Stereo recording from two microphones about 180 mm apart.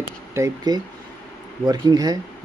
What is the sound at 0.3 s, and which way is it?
Speech, 15° right (ahead or behind).